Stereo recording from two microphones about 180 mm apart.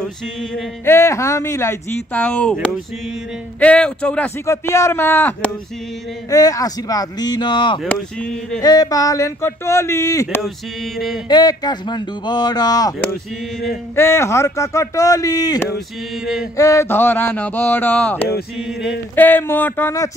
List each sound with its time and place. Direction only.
0.8 s a man's voice: 15° left (ahead or behind)
3.5 s a man's voice: 5° left (ahead or behind); by 7.8 s 25° left (ahead or behind)
7.8 s a sound: 5° left (ahead or behind)
8.5 s a man's voice: 20° left (ahead or behind)
10.4 s a sound: centre (ahead or behind)
11.2 s speech: 20° left (ahead or behind)
13.9 s a man's voice: 15° left (ahead or behind)
18.6 s a sound: 5° right (ahead or behind)
19.1 s a man's voice: 10° left (ahead or behind)